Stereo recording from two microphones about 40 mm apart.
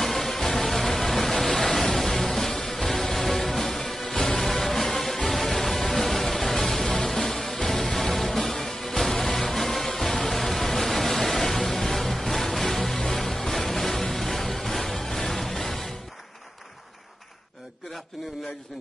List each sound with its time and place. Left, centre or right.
0.0 s music: centre